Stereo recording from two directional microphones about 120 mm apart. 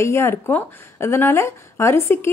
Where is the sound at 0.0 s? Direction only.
20° left (ahead or behind).